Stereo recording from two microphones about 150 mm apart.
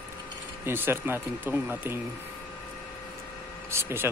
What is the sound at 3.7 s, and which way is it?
Speech, 15° right (ahead or behind).